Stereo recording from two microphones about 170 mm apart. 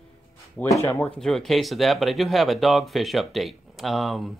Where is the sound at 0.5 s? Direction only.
15° left (ahead or behind).